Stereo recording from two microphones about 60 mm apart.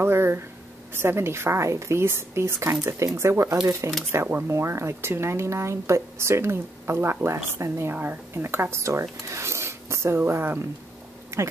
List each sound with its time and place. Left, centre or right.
0.0 s speech: right
7.9 s speech: right
10.2 s speech: right